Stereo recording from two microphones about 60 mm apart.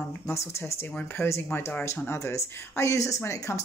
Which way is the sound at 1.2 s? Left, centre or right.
Left.